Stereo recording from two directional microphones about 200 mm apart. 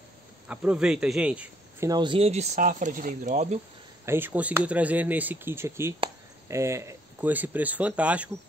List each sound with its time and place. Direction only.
0.5 s speech: 5° right (ahead or behind)
1.9 s speech: 25° right (ahead or behind)
4.0 s speech: 10° right (ahead or behind)